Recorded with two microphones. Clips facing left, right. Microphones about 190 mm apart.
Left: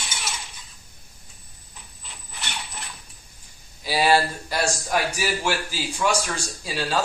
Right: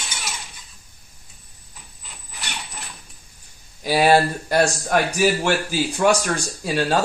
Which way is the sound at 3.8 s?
50° right (ahead or behind).